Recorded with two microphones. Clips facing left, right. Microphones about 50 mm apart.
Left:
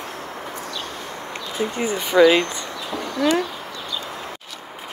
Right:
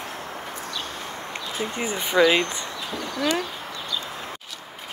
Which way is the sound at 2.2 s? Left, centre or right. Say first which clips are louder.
Left 4 dB; centre.